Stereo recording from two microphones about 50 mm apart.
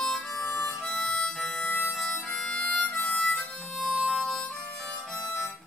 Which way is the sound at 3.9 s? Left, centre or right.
Centre.